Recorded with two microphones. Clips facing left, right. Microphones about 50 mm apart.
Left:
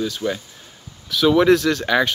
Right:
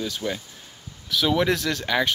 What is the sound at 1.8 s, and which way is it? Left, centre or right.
Speech, centre.